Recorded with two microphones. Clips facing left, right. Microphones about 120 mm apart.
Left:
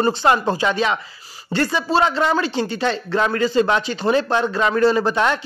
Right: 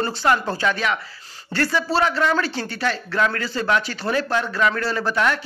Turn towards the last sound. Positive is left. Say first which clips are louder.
# left 3 dB
turn(degrees=20)  # may be behind; listen again after turning